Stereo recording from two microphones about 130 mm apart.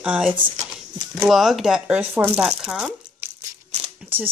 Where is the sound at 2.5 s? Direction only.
Centre (ahead or behind).